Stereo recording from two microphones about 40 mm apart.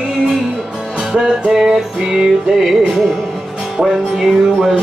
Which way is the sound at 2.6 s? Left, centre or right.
Centre.